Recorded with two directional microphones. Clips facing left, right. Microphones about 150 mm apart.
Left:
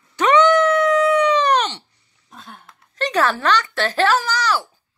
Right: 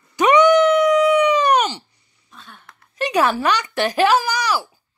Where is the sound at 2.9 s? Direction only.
10° right (ahead or behind).